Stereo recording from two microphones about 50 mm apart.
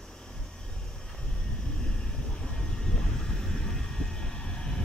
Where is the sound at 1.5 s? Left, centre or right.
Centre.